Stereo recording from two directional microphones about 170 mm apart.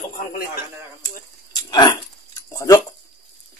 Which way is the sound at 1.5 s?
25° left (ahead or behind).